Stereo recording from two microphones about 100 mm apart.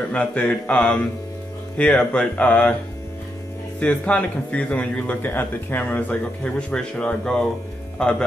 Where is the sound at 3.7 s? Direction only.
15° left (ahead or behind).